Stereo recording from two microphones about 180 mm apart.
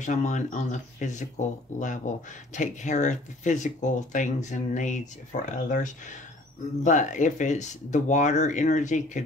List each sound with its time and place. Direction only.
0.0 s speech: 40° left (ahead or behind)